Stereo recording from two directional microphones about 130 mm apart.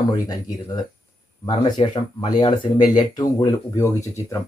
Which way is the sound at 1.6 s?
40° left (ahead or behind).